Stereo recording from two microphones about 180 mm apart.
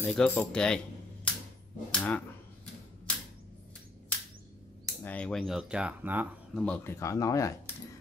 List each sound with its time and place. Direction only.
0.0 s speech: 5° left (ahead or behind)
5.0 s speech: 5° left (ahead or behind)
6.5 s speech: 5° left (ahead or behind)